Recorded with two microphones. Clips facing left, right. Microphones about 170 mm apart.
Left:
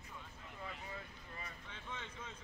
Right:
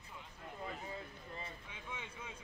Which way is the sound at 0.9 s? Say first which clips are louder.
Right 3 dB; 25° right (ahead or behind).